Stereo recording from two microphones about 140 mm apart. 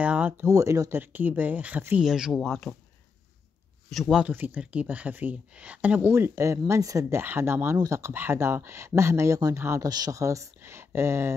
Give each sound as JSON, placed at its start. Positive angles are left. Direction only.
{"t": 0.0, "sound": "a sound", "side_deg": -10}
{"t": 0.5, "sound": "speech", "side_deg": -20}
{"t": 3.9, "sound": "speech", "side_deg": -5}